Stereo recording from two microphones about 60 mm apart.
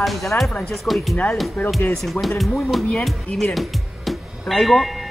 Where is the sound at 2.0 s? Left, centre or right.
Centre.